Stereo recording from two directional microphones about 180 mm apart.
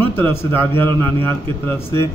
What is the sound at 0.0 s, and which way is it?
A man's voice, 10° left (ahead or behind).